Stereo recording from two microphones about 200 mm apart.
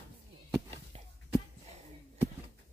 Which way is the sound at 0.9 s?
30° right (ahead or behind).